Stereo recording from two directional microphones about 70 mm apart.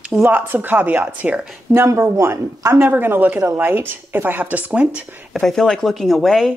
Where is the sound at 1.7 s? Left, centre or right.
Right.